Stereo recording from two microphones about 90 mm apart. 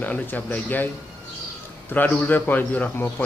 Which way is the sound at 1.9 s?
20° left (ahead or behind).